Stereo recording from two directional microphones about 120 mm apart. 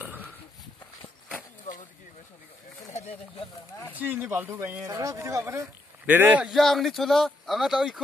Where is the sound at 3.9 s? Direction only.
15° right (ahead or behind).